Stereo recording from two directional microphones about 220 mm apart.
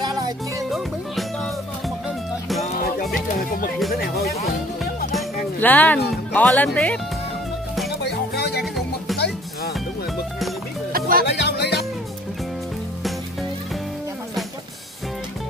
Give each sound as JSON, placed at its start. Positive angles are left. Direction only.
{"t": 0.0, "sound": "music", "side_deg": -20}
{"t": 0.7, "sound": "music", "side_deg": 0}
{"t": 2.6, "sound": "music", "side_deg": 35}
{"t": 5.1, "sound": "music", "side_deg": 5}
{"t": 6.3, "sound": "speech", "side_deg": 5}
{"t": 8.0, "sound": "music", "side_deg": 50}
{"t": 8.7, "sound": "music", "side_deg": 0}
{"t": 10.9, "sound": "music", "side_deg": -40}
{"t": 11.3, "sound": "music", "side_deg": 50}